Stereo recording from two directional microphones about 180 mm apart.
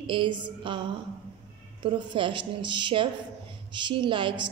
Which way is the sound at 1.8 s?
25° right (ahead or behind).